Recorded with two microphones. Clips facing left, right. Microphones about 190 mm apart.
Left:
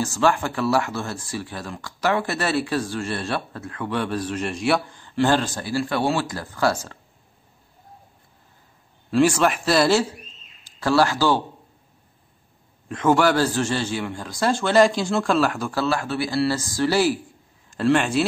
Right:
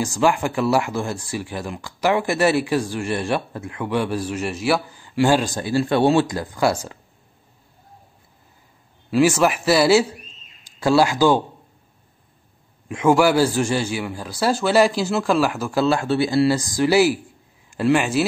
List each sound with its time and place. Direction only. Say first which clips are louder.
0.0 s speech: right 2 dB; 15° right (ahead or behind)
9.1 s speech: right 1 dB; 5° right (ahead or behind)
12.8 s speech: right 2 dB; 10° right (ahead or behind)
15.8 s speech: right 5 dB; 25° right (ahead or behind); by 18.2 s 5° right (ahead or behind)